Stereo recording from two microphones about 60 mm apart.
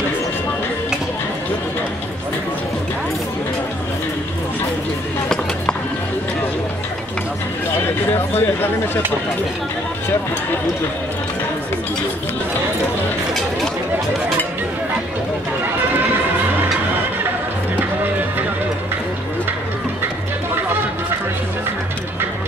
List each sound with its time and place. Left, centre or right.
8.4 s speech: left